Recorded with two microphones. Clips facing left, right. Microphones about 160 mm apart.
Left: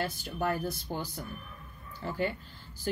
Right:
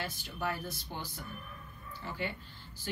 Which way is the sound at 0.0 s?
45° left (ahead or behind).